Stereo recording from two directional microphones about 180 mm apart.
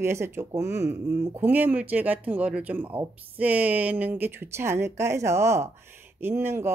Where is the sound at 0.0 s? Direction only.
15° right (ahead or behind).